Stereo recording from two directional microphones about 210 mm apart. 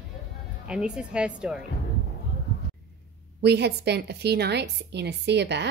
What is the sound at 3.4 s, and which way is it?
A woman's voice, 50° right (ahead or behind).